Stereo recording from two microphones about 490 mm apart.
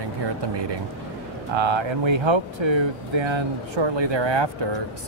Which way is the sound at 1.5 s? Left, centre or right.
Right.